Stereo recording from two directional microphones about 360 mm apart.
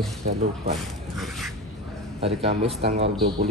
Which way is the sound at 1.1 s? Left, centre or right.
Centre.